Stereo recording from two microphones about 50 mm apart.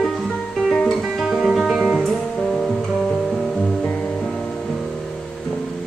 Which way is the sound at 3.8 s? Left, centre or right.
Left.